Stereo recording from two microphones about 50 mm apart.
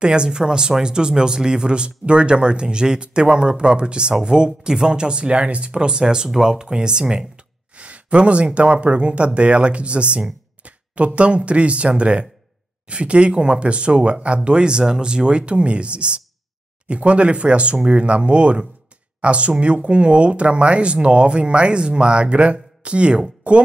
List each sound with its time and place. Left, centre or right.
0.0 s speech: centre